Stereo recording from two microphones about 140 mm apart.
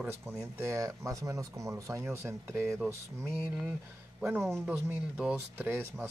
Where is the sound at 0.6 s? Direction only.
20° right (ahead or behind).